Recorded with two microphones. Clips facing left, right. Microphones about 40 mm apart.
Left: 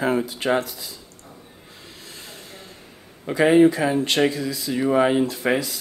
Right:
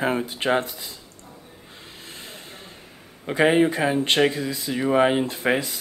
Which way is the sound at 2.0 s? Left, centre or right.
Right.